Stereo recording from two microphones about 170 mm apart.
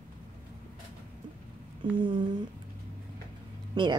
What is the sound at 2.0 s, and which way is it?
Speech, 25° right (ahead or behind).